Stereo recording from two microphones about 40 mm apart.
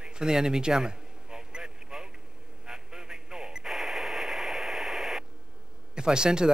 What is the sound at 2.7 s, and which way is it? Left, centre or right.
Radio, centre.